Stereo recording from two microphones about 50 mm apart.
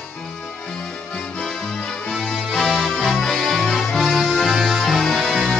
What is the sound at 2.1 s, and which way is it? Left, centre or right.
Music, centre.